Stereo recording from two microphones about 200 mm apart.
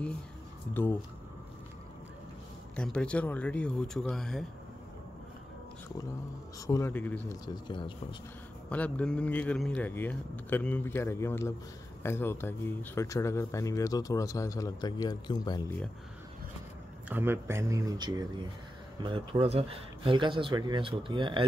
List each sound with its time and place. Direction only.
2.7 s speech: 5° left (ahead or behind)
6.6 s speech: 15° left (ahead or behind)
7.4 s speech: 20° left (ahead or behind)
8.6 s speech: 5° left (ahead or behind)
17.1 s speech: 10° right (ahead or behind)